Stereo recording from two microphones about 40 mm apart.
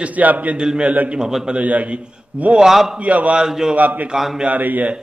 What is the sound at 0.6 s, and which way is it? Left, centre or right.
Speech, centre.